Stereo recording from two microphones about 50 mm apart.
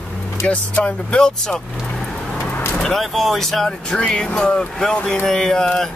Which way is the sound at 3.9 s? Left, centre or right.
Centre.